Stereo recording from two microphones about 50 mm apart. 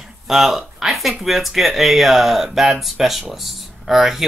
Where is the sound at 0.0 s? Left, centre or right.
Centre.